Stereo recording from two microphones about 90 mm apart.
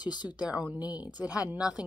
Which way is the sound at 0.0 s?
50° left (ahead or behind).